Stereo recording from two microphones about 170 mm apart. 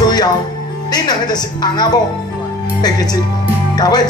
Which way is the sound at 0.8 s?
25° left (ahead or behind).